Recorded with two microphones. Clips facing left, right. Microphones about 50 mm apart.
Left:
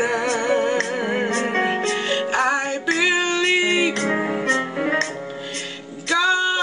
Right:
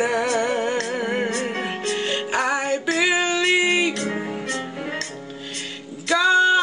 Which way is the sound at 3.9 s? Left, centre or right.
Left.